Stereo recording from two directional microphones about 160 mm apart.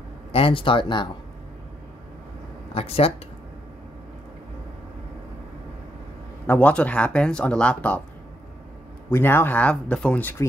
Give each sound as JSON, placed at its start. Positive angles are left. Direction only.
{"t": 0.3, "sound": "speech", "side_deg": 35}
{"t": 2.7, "sound": "speech", "side_deg": 40}
{"t": 6.4, "sound": "speech", "side_deg": 10}
{"t": 9.1, "sound": "speech", "side_deg": 15}